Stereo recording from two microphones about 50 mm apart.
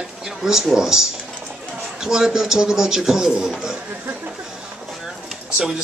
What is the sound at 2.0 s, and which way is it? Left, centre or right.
A man's voice, centre.